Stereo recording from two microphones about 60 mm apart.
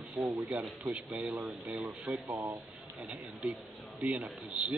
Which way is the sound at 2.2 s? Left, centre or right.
Right.